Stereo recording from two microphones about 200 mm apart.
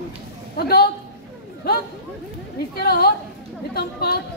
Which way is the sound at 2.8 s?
50° left (ahead or behind).